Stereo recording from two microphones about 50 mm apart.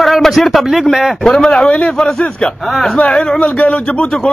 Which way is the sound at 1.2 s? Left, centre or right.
Centre.